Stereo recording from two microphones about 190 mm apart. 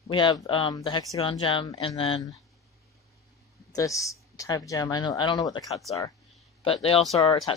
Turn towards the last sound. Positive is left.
turn(degrees=30)  # may be behind; listen again after turning